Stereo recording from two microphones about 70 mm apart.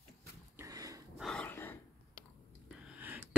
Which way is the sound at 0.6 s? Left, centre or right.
Right.